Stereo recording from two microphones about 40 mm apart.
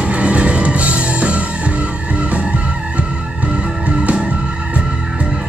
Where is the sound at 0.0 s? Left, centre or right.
Right.